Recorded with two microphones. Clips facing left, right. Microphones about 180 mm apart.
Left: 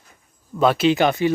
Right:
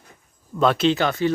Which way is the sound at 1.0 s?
15° left (ahead or behind).